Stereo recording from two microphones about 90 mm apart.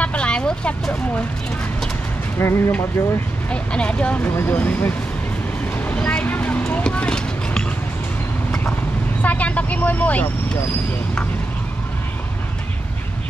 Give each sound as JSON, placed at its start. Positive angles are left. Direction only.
{"t": 0.0, "sound": "vehicle", "side_deg": 15}
{"t": 2.3, "sound": "speech", "side_deg": 25}
{"t": 3.4, "sound": "speech", "side_deg": 10}
{"t": 5.9, "sound": "vehicle", "side_deg": 10}
{"t": 6.7, "sound": "a sound", "side_deg": 15}
{"t": 9.2, "sound": "speech", "side_deg": 15}